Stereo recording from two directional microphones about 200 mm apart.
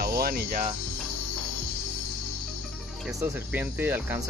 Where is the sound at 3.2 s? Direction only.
10° right (ahead or behind).